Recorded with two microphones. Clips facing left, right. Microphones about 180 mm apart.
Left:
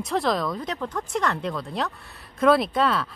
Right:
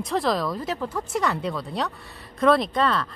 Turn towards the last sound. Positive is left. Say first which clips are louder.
# even
turn(degrees=5)  # may be behind; listen again after turning